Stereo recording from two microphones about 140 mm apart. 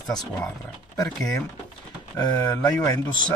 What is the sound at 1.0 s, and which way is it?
Speech, 5° left (ahead or behind).